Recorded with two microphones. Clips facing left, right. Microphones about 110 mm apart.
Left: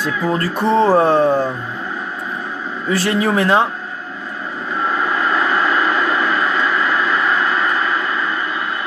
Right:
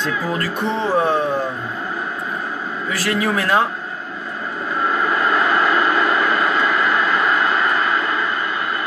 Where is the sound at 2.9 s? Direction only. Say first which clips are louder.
Left 4 dB; 30° left (ahead or behind).